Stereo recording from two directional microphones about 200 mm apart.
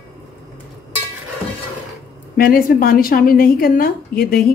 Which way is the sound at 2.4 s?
45° left (ahead or behind).